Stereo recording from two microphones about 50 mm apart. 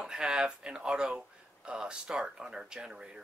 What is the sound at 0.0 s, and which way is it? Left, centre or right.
Speech, centre.